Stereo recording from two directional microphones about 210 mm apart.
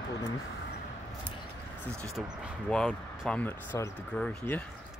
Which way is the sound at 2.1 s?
Centre (ahead or behind).